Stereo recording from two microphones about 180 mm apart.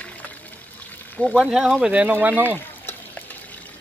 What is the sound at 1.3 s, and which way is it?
Speech, 5° right (ahead or behind).